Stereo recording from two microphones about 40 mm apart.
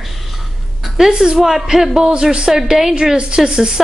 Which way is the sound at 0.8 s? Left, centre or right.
Centre.